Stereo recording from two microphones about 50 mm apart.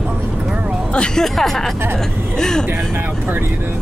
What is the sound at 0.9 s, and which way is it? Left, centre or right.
Speech, centre.